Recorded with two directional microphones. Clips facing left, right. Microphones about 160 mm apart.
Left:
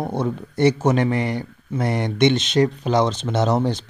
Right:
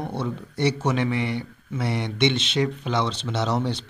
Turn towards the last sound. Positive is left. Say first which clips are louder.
# left 5 dB
turn(degrees=45)  # may be behind; listen again after turning